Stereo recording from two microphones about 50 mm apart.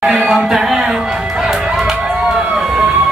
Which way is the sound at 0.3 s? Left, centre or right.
Centre.